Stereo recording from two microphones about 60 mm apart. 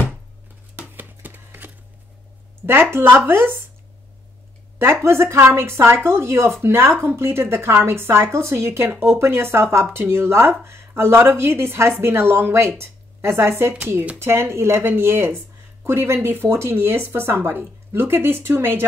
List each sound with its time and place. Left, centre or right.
0.7 s a sound: right
2.6 s speech: right
5.0 s speech: right